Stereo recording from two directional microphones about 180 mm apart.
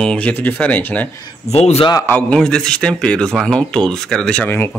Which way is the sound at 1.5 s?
35° left (ahead or behind).